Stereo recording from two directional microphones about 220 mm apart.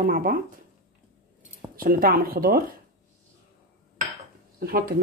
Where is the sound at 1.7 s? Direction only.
40° right (ahead or behind).